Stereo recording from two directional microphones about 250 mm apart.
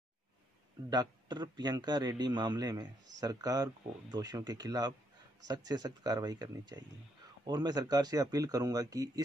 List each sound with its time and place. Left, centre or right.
0.8 s a man's voice: centre